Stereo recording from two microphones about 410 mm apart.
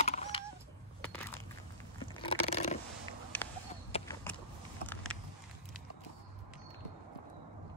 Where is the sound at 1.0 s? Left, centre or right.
Centre.